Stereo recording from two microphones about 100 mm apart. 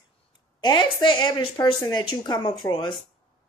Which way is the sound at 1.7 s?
40° left (ahead or behind).